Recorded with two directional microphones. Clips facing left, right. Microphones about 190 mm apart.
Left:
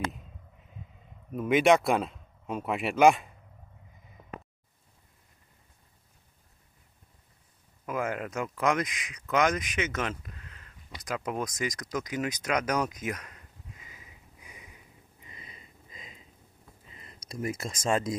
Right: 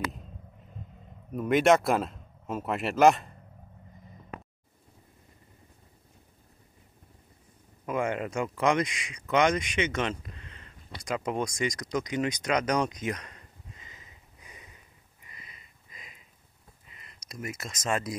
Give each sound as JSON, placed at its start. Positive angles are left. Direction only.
{"t": 1.3, "sound": "speech", "side_deg": 0}
{"t": 7.8, "sound": "speech", "side_deg": 0}
{"t": 15.2, "sound": "a sound", "side_deg": 30}
{"t": 16.9, "sound": "speech", "side_deg": 30}